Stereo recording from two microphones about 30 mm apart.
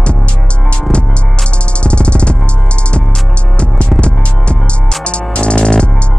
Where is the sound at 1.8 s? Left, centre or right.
Left.